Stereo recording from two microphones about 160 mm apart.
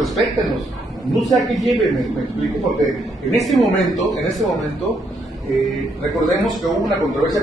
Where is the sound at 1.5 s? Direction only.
Centre (ahead or behind).